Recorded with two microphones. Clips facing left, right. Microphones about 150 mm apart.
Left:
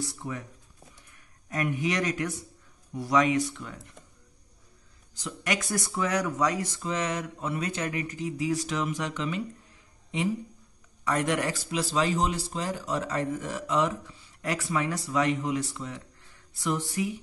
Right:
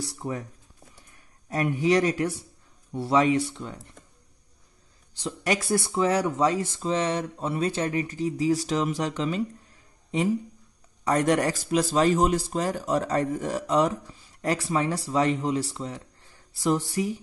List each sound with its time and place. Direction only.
0.2 s speech: 40° right (ahead or behind)
5.1 s speech: 30° right (ahead or behind)
11.1 s speech: 40° right (ahead or behind)